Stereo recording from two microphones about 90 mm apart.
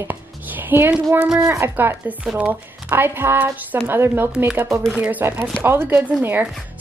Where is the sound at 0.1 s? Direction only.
20° right (ahead or behind).